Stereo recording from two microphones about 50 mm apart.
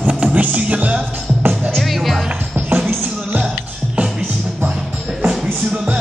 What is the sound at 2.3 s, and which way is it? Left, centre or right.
Music, right.